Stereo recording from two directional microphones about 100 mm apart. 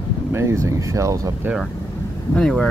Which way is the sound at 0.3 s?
30° right (ahead or behind).